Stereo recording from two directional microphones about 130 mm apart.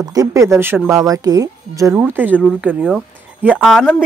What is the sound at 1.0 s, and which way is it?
Speech, 30° right (ahead or behind).